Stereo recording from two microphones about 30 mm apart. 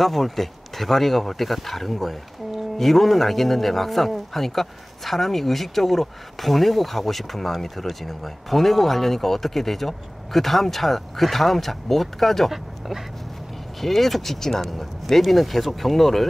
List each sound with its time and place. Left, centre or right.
0.0 s speech: centre
12.4 s speech: centre
13.7 s speech: centre